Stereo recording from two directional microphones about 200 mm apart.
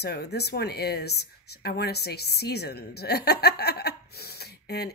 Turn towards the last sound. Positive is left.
turn(degrees=55)  # may be behind; listen again after turning